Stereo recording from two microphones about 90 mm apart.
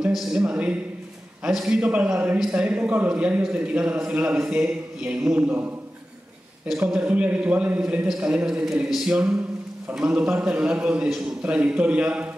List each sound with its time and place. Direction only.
0.3 s a man's voice: 10° right (ahead or behind)
6.8 s speech: 15° right (ahead or behind)